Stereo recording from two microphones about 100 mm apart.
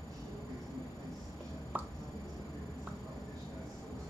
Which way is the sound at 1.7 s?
20° right (ahead or behind).